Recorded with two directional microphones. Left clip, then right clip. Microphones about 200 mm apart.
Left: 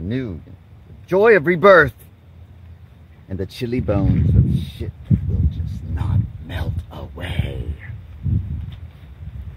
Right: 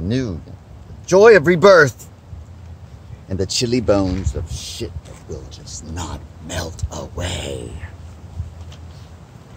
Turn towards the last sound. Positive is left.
turn(degrees=30)  # may be behind; listen again after turning